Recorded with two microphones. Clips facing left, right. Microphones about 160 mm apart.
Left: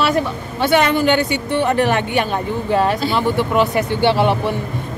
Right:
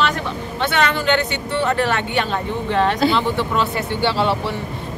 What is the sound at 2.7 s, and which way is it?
Speech, 10° left (ahead or behind).